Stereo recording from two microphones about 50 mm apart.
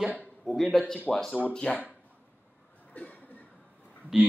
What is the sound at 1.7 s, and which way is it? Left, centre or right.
Speech, centre.